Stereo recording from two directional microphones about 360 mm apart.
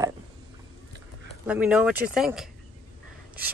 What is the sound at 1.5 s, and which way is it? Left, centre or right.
Speech, centre.